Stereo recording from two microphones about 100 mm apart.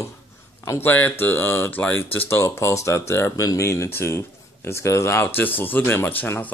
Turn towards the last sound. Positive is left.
turn(degrees=15)  # may be behind; listen again after turning